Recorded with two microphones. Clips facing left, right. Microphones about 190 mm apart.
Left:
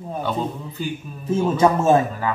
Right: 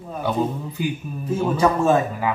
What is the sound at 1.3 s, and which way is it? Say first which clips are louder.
Speech: left 2 dB; 25° left (ahead or behind).